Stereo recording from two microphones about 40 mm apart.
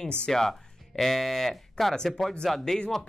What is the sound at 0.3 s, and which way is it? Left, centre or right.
Speech, centre.